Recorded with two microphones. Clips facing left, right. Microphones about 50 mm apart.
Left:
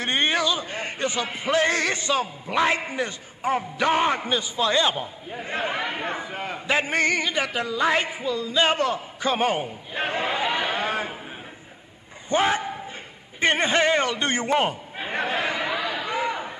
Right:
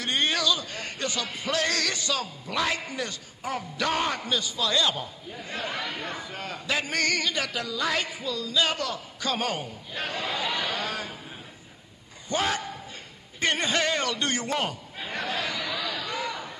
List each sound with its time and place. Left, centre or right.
0.0 s a man's voice: left
12.3 s a man's voice: left